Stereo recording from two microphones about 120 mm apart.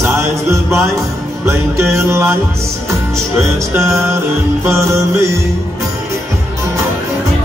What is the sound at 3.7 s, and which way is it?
Music, 20° right (ahead or behind).